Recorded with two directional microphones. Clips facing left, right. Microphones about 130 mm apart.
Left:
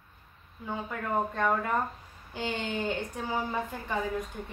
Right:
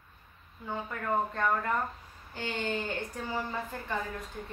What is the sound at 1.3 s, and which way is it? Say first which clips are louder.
A woman's voice: left 2 dB; 10° left (ahead or behind).